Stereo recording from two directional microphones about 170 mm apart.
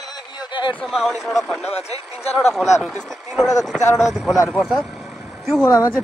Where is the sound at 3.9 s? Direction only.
Centre (ahead or behind).